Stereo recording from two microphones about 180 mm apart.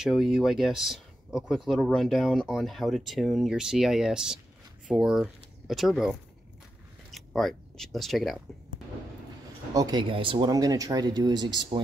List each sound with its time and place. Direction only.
0.0 s speech: centre (ahead or behind)
9.8 s speech: 25° right (ahead or behind)